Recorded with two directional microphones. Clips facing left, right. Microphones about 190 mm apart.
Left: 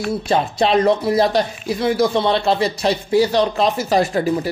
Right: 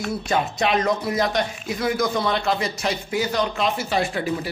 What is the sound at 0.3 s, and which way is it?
Speech, 30° left (ahead or behind).